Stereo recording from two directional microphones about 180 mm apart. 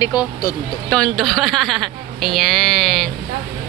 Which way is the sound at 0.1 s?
20° left (ahead or behind).